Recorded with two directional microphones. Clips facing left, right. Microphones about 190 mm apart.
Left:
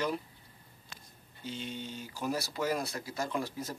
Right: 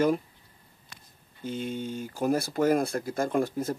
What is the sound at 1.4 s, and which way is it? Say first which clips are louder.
Speech: right 8 dB; 50° right (ahead or behind).